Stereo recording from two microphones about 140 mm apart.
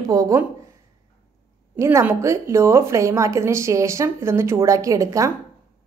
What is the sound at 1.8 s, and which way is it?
A woman's voice, 20° right (ahead or behind).